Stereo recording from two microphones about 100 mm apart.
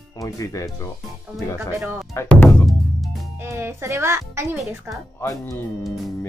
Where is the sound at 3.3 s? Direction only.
25° right (ahead or behind).